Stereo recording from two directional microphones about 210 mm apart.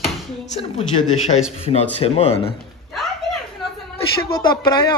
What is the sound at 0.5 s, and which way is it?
A woman's voice, 30° left (ahead or behind).